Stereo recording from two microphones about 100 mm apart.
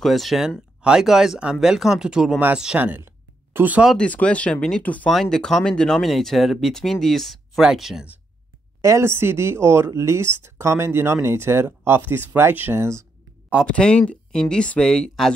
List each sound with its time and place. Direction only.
0.0 s speech: centre (ahead or behind); by 3.8 s 20° right (ahead or behind)
4.0 s speech: 15° left (ahead or behind); by 8.1 s 5° right (ahead or behind)
8.8 s speech: 25° right (ahead or behind)
13.7 s speech: 10° left (ahead or behind)